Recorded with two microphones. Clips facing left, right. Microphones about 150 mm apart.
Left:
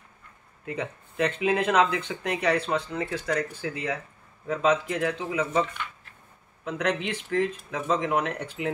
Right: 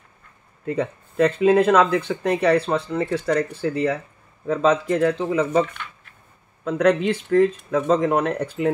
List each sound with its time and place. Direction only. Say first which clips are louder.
0.7 s speech: right 8 dB; 40° right (ahead or behind)
7.2 s speech: right 9 dB; 50° right (ahead or behind)